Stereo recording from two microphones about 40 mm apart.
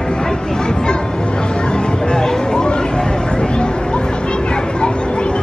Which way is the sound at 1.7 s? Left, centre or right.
Centre.